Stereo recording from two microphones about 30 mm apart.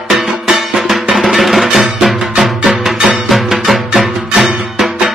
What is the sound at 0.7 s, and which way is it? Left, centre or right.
Drum, centre.